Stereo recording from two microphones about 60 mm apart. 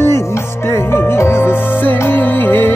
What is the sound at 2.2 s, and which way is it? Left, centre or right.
Music, left.